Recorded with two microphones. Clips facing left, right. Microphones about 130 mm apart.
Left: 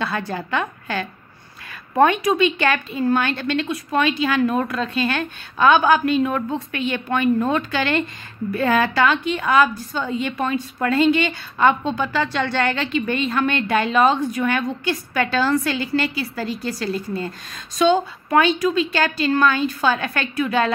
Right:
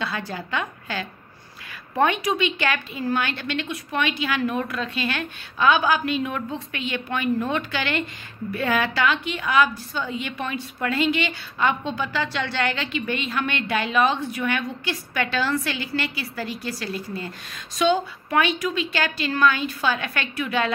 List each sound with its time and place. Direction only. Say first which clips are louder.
0.0 s a woman's voice: left 4 dB; 55° left (ahead or behind)